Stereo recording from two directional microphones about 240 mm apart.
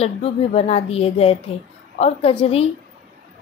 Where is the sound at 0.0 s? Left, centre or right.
Left.